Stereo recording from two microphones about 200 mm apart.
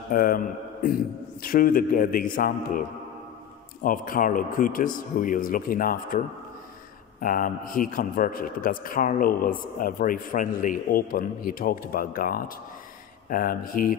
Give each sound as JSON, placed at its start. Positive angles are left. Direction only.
{"t": 0.1, "sound": "a man's voice", "side_deg": 45}
{"t": 3.8, "sound": "a man's voice", "side_deg": 45}